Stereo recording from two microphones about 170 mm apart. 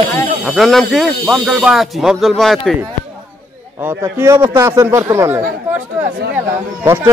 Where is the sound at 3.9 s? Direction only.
15° right (ahead or behind).